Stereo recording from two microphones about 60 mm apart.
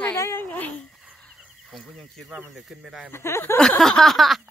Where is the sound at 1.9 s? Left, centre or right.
Centre.